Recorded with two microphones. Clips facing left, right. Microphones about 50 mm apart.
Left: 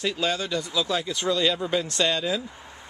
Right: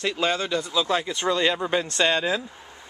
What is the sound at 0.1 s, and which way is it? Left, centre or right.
Speech, right.